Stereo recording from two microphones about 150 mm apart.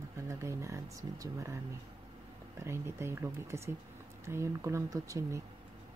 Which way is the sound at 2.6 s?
15° right (ahead or behind).